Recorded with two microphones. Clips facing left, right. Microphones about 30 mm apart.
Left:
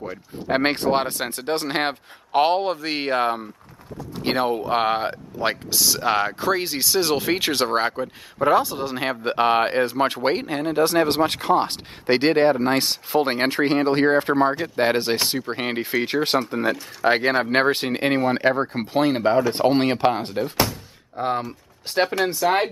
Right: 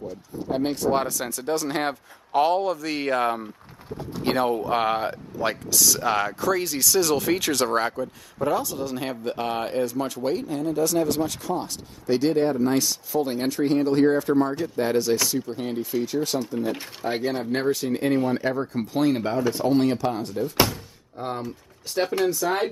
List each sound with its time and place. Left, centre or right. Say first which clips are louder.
0.5 s speech: left 3 dB; left
20.5 s speech: right 3 dB; centre
21.2 s speech: left 6 dB; left